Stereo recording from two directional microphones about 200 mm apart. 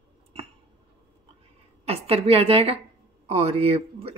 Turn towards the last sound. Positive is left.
turn(degrees=-30)  # may be behind; listen again after turning